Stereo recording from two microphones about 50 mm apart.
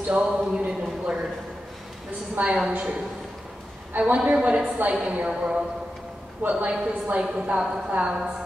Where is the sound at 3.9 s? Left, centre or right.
Right.